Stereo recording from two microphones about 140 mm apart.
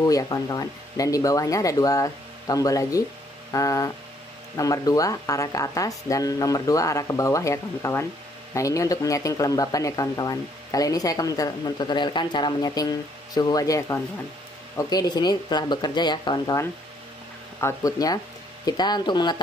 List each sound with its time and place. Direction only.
0.0 s speech: 25° left (ahead or behind)